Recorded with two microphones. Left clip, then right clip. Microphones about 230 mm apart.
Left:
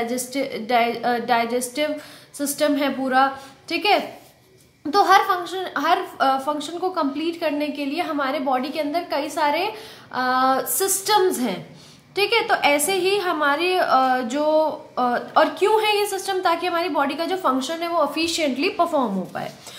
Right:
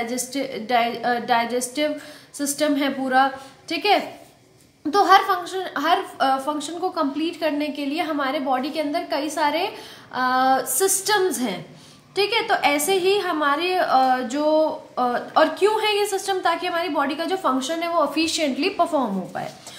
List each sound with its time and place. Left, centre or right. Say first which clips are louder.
0.0 s a woman's voice: left 2 dB; centre